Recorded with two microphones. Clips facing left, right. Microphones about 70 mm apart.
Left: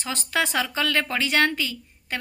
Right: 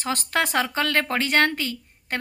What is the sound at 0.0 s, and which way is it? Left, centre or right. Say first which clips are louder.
A woman's voice: right 2 dB; right.